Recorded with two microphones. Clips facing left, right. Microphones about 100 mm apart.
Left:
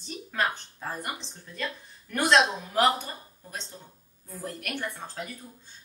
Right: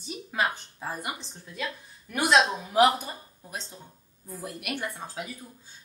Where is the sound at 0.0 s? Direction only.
10° right (ahead or behind).